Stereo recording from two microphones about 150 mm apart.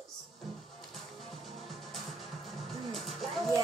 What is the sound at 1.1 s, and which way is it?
Music, centre (ahead or behind).